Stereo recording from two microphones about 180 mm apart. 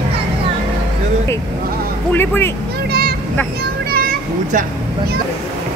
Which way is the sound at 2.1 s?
10° left (ahead or behind).